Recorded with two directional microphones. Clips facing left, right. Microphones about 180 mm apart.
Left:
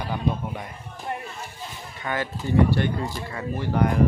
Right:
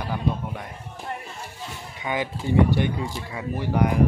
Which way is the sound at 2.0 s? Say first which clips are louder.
Right 1 dB; 15° right (ahead or behind).